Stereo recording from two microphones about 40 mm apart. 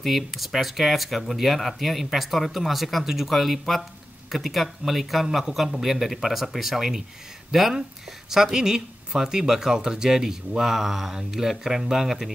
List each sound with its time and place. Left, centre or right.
0.0 s speech: centre